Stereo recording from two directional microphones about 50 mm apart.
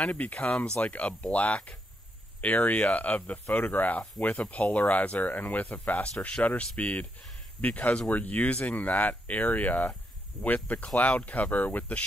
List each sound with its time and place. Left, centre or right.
0.0 s speech: left
4.4 s speech: left